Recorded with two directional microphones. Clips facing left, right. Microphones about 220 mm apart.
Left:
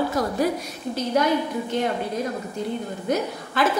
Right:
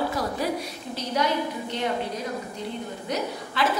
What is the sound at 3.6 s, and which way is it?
Speech, 50° left (ahead or behind).